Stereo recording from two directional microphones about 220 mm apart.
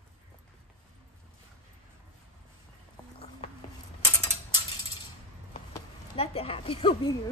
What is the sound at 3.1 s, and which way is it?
Horse, 25° left (ahead or behind).